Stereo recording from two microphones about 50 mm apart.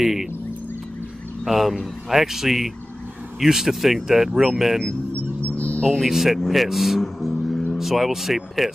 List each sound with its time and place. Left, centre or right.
0.0 s speech: centre
1.4 s speech: centre
5.5 s music: left
6.0 s a man's voice: centre